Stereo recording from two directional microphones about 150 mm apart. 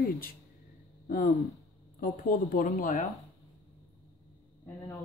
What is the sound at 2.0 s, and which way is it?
Speech, 70° left (ahead or behind).